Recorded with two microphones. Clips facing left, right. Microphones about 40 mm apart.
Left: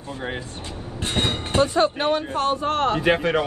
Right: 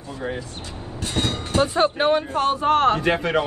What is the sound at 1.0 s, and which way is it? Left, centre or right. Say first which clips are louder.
Speech: left 1 dB; left.